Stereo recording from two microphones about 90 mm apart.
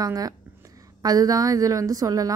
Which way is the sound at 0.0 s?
40° right (ahead or behind).